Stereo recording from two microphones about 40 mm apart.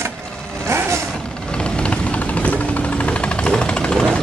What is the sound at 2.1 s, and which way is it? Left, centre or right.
Jackhammer, left.